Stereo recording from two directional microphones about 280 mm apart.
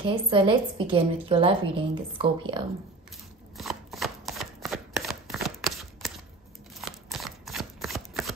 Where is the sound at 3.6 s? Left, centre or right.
Centre.